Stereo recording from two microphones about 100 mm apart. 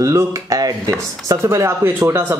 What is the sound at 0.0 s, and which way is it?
Speech, 35° right (ahead or behind).